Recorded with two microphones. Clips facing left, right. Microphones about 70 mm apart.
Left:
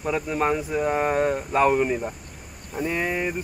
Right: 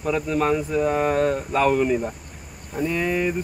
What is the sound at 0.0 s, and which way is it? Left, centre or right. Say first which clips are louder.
Speech: right 2 dB; centre.